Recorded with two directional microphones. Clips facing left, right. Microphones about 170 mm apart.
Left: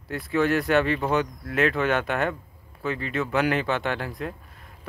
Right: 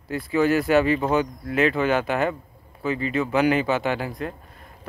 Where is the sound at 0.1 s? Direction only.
Centre (ahead or behind).